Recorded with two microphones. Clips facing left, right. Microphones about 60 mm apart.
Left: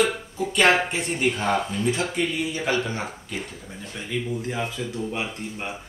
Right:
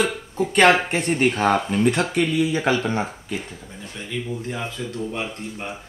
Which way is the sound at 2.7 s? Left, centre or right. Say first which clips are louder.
Right 3 dB; right.